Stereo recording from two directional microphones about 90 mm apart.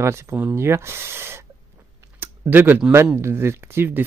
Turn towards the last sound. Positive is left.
turn(degrees=-25)  # may be behind; listen again after turning